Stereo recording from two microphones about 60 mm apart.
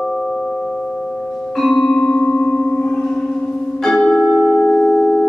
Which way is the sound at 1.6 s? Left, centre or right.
Centre.